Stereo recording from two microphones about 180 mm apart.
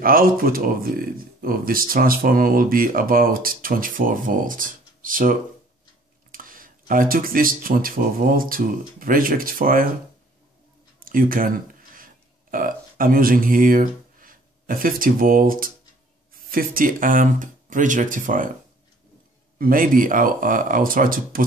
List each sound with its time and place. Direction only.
0.0 s speech: 55° right (ahead or behind)
11.1 s speech: 50° right (ahead or behind)
19.6 s speech: 50° right (ahead or behind)